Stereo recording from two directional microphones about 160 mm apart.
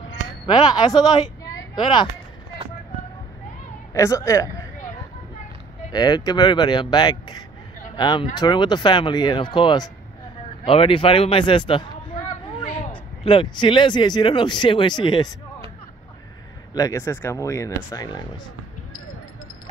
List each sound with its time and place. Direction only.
0.5 s speech: 25° left (ahead or behind)
1.4 s a sound: 30° left (ahead or behind)
3.9 s a sound: 20° left (ahead or behind)
5.9 s a man's voice: 25° left (ahead or behind)
12.9 s speech: 30° left (ahead or behind)
16.7 s speech: 20° left (ahead or behind)